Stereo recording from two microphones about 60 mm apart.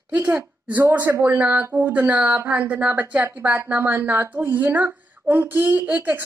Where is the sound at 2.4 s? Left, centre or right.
Right.